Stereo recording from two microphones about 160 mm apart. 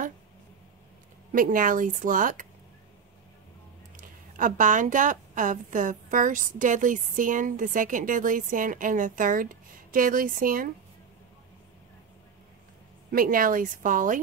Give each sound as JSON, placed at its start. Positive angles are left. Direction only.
{"t": 1.3, "sound": "a woman's voice", "side_deg": -60}
{"t": 3.9, "sound": "a woman's voice", "side_deg": -55}
{"t": 13.1, "sound": "a woman's voice", "side_deg": -60}